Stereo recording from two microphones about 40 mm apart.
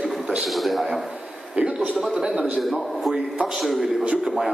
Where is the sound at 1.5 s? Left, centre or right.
Right.